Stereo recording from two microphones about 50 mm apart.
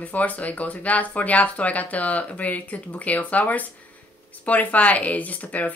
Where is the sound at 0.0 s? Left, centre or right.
Left.